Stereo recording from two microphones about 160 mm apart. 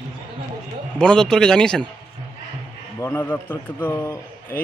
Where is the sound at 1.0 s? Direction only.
5° left (ahead or behind).